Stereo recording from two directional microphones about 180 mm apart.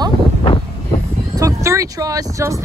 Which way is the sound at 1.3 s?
15° right (ahead or behind).